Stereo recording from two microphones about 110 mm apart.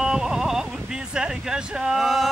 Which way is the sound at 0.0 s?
5° right (ahead or behind).